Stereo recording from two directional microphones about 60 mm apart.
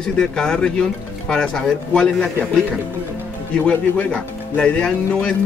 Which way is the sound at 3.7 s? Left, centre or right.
Centre.